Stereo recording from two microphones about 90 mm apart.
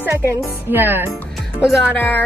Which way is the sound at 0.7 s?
20° right (ahead or behind).